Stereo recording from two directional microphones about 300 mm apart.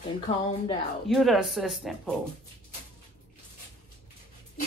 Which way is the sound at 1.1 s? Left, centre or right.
Centre.